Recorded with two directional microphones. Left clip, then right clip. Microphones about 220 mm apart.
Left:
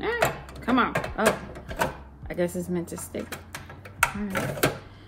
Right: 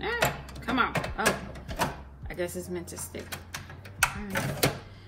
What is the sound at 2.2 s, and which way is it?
Speech, 45° left (ahead or behind).